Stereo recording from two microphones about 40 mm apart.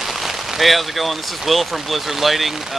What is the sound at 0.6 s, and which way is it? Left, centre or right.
Speech, centre.